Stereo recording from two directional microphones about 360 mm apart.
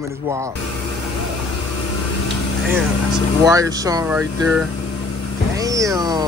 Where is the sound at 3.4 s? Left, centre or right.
Centre.